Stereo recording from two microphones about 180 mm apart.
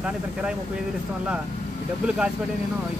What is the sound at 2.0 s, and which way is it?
Speech, 5° right (ahead or behind).